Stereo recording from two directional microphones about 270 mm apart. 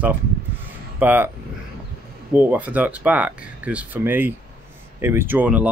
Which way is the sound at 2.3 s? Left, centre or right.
Centre.